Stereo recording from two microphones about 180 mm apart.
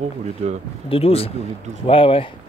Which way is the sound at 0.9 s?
35° left (ahead or behind).